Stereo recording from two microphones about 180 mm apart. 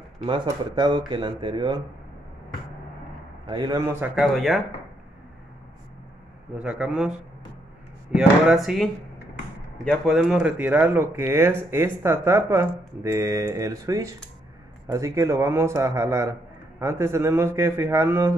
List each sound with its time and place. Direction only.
0.3 s speech: 25° right (ahead or behind)
3.4 s speech: 25° right (ahead or behind)
4.1 s speech: centre (ahead or behind)
6.6 s speech: 5° right (ahead or behind)